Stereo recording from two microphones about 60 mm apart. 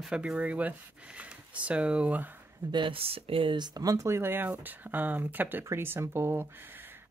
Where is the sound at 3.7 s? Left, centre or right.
Right.